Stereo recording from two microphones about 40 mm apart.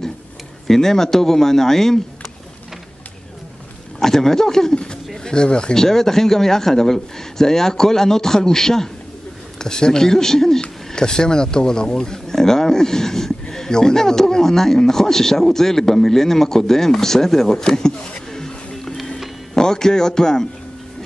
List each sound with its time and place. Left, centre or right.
0.7 s speech: centre
4.0 s speech: centre
5.8 s speech: centre
18.3 s music: centre
19.5 s speech: centre